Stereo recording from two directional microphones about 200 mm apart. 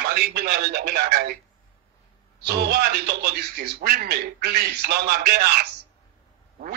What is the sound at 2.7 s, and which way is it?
Speech, 55° right (ahead or behind).